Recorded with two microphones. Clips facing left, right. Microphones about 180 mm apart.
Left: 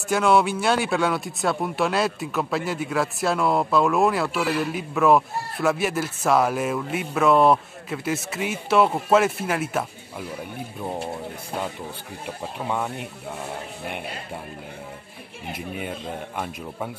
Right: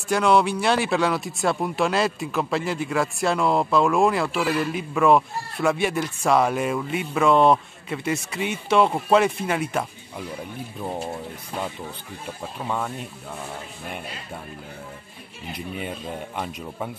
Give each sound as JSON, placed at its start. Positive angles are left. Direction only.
{"t": 0.1, "sound": "speech", "side_deg": 0}
{"t": 12.6, "sound": "speech", "side_deg": 10}
{"t": 13.8, "sound": "speech", "side_deg": 65}